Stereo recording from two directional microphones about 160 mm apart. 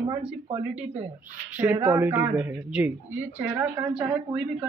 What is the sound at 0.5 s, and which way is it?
Speech, 40° right (ahead or behind).